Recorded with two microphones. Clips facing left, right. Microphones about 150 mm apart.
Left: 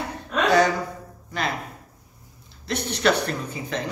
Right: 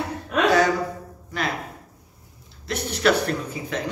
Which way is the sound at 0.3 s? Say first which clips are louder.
Even; 5° right (ahead or behind).